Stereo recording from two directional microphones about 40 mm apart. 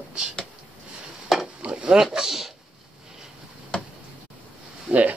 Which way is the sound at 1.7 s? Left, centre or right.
Right.